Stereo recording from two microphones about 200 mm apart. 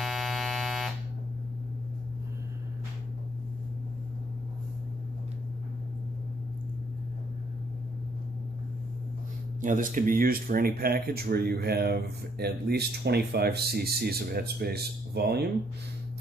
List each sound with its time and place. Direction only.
0.0 s buzzer: centre (ahead or behind)
9.6 s speech: 40° right (ahead or behind)